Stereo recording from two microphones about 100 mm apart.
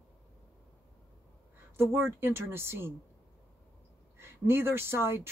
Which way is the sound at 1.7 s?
25° right (ahead or behind).